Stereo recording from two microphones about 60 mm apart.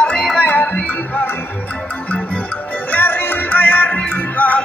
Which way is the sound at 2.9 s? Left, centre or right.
Left.